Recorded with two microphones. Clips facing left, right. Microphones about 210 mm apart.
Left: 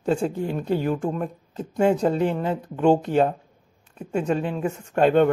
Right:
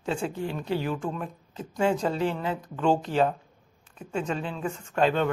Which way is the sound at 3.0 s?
50° left (ahead or behind).